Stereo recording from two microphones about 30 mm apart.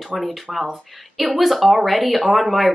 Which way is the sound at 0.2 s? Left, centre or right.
Centre.